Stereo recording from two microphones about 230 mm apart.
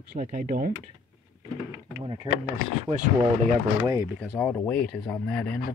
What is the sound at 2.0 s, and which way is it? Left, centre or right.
Speech, right.